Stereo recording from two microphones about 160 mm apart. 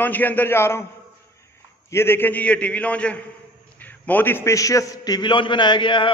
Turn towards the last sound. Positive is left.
turn(degrees=30)  # may be behind; listen again after turning